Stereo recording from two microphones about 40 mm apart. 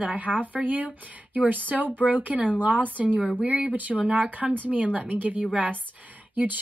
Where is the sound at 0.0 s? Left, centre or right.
Right.